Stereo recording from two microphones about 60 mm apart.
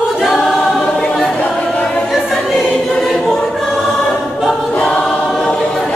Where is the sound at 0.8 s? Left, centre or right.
Centre.